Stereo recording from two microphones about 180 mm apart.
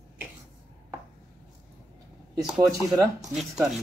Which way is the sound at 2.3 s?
20° right (ahead or behind).